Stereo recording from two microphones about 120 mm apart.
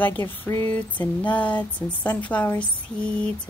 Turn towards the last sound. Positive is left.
turn(degrees=10)  # may be behind; listen again after turning